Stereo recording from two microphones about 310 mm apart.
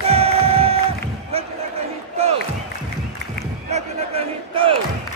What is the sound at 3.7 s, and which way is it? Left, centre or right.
Battle cry, centre.